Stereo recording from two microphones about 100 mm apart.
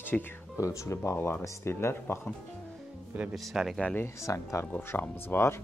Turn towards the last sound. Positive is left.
turn(degrees=25)  # may be behind; listen again after turning